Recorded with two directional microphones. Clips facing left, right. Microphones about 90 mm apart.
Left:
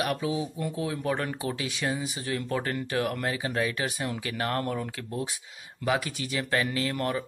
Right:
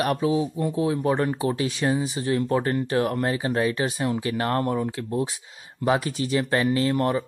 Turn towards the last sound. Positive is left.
turn(degrees=-30)  # may be behind; listen again after turning